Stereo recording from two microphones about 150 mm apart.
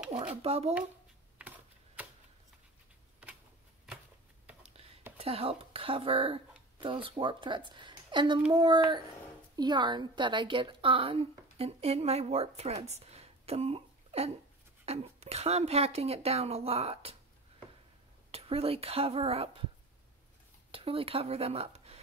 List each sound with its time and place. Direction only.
0.1 s a child's voice: 40° right (ahead or behind)
1.4 s typing: 10° right (ahead or behind)
5.1 s a woman's voice: 40° right (ahead or behind)
18.3 s a woman's voice: 40° right (ahead or behind)
20.7 s speech: 40° right (ahead or behind)